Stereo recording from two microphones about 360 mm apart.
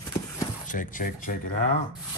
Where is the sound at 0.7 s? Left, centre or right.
Left.